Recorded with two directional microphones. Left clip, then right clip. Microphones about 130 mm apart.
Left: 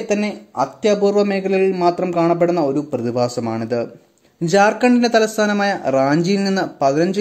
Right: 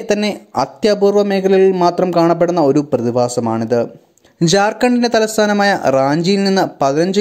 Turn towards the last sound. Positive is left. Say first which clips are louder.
# right 2 dB
turn(degrees=-30)  # may be behind; listen again after turning